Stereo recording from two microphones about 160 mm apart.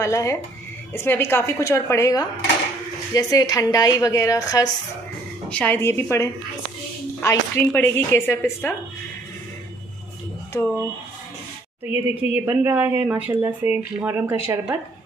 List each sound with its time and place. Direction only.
0.0 s a woman's voice: 20° left (ahead or behind)
5.5 s a woman's voice: 10° left (ahead or behind)
11.9 s speech: 15° right (ahead or behind)